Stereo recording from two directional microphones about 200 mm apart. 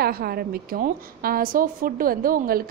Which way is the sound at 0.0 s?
50° right (ahead or behind).